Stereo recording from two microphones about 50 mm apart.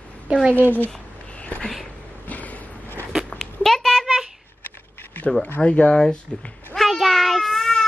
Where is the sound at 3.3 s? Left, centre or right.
Centre.